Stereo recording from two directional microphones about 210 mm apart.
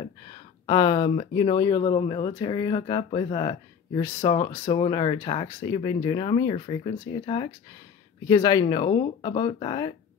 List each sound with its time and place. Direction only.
0.3 s speech: 20° left (ahead or behind)